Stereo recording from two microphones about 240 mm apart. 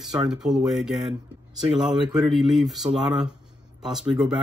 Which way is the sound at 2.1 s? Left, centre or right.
Centre.